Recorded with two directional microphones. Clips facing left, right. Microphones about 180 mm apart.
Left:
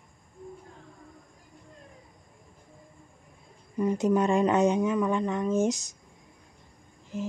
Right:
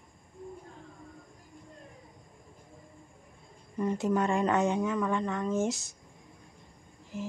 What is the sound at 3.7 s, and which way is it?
Speech, 10° left (ahead or behind).